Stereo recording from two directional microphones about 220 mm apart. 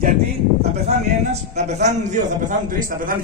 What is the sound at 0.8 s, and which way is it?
A man's voice, 30° right (ahead or behind).